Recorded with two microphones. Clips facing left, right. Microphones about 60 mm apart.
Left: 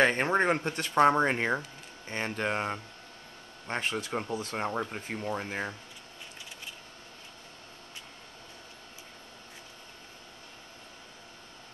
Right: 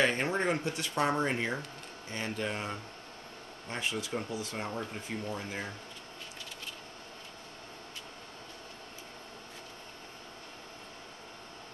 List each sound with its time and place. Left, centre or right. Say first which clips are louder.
0.0 s speech: left 4 dB; left